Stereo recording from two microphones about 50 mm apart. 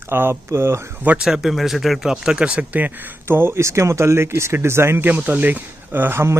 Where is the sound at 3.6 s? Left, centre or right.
Right.